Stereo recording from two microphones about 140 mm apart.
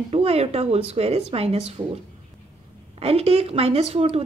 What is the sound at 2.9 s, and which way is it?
Speech, 45° right (ahead or behind).